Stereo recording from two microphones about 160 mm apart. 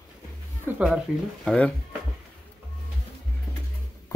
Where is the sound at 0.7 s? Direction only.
10° right (ahead or behind).